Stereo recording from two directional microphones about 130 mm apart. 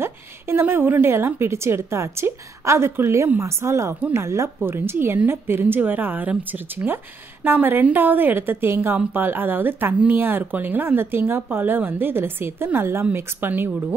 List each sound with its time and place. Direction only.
0.0 s a woman's voice: 20° right (ahead or behind)